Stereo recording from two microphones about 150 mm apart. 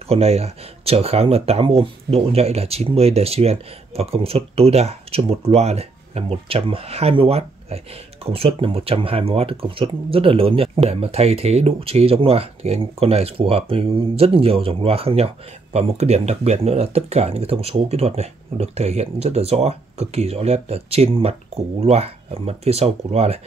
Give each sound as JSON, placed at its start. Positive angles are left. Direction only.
{"t": 0.1, "sound": "speech", "side_deg": -45}